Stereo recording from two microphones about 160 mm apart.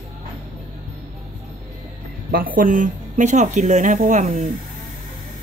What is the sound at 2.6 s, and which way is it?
Speech, 55° right (ahead or behind).